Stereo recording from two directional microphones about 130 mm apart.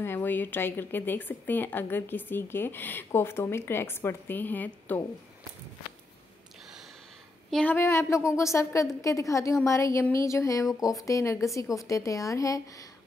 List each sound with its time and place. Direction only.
0.0 s speech: 15° left (ahead or behind)
7.5 s speech: 15° left (ahead or behind)